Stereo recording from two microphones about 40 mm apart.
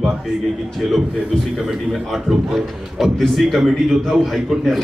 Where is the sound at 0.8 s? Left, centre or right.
Centre.